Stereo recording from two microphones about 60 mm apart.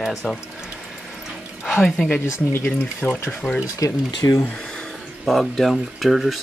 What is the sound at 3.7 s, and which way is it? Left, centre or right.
Speech, left.